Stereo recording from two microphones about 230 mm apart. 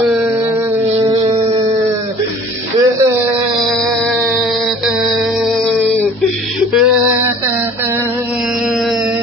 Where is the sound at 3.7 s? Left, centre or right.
Centre.